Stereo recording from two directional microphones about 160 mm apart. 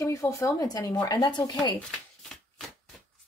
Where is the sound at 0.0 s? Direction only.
20° left (ahead or behind).